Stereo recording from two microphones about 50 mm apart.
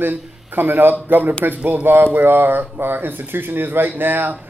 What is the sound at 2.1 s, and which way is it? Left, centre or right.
Speech, right.